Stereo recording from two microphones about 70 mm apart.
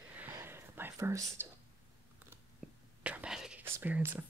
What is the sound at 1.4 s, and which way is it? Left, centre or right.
Speech, right.